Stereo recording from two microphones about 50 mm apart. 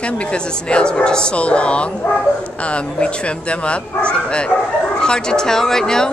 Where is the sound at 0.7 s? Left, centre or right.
Left.